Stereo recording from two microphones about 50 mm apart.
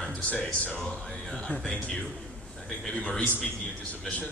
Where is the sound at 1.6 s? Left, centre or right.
Left.